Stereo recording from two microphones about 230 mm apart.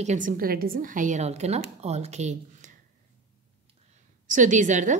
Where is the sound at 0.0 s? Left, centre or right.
Right.